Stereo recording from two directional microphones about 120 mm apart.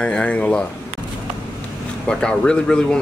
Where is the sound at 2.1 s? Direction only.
5° left (ahead or behind).